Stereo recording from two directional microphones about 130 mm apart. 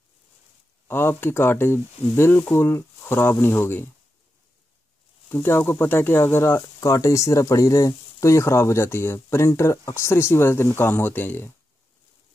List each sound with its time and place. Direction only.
0.8 s speech: 15° left (ahead or behind)
5.3 s speech: 15° left (ahead or behind)